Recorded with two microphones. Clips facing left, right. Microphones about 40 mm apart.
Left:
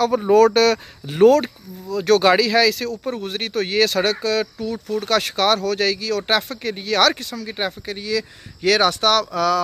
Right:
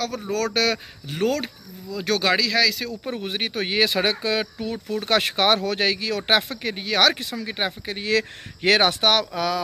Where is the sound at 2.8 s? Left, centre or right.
Centre.